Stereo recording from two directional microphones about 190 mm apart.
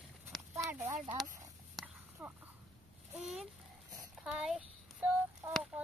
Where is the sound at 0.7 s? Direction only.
15° right (ahead or behind).